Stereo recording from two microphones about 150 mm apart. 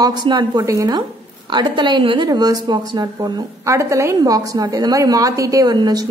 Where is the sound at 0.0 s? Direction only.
30° right (ahead or behind).